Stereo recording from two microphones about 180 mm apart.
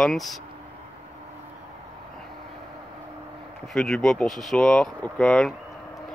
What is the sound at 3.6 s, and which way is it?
Speech, centre (ahead or behind).